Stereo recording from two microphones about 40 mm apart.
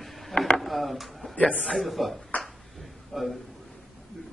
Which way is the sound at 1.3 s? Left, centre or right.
Left.